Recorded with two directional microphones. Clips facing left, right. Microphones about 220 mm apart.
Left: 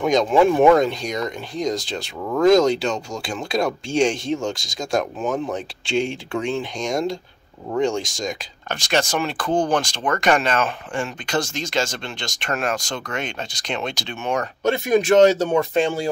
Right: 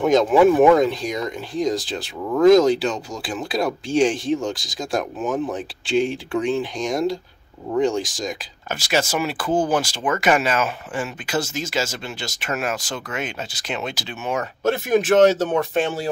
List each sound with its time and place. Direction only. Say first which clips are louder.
0.0 s speech: right 2 dB; 5° right (ahead or behind)